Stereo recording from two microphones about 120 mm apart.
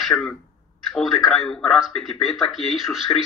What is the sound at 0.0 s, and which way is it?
A man's voice, 5° left (ahead or behind).